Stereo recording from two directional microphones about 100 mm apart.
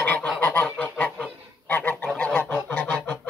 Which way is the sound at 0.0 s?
15° left (ahead or behind).